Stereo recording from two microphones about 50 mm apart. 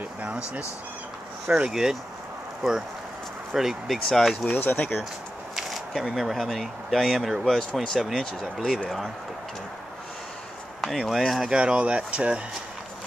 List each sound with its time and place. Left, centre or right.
1.7 s speech: centre
3.5 s speech: centre
4.6 s speech: left
5.6 s speech: centre
7.4 s speech: centre
10.8 s speech: centre
11.4 s speech: centre